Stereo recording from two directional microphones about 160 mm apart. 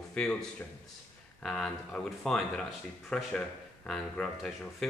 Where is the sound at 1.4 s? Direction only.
5° left (ahead or behind).